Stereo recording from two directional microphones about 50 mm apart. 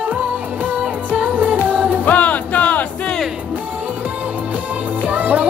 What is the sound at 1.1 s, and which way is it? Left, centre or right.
Music, right.